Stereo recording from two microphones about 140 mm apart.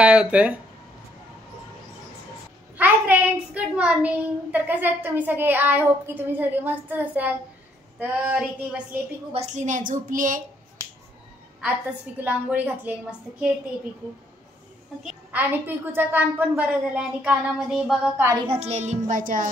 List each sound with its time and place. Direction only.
0.0 s speech: 10° right (ahead or behind)
2.8 s a child's voice: 10° right (ahead or behind)
9.3 s speech: 55° right (ahead or behind); by 10.9 s 70° right (ahead or behind)
12.2 s a child's voice: 10° right (ahead or behind)
15.3 s a child's voice: 15° right (ahead or behind)
18.1 s a woman's voice: 20° right (ahead or behind)
18.4 s music: 45° right (ahead or behind); by 19.5 s 70° right (ahead or behind)